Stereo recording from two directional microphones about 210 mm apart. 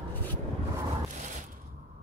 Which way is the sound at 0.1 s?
10° left (ahead or behind).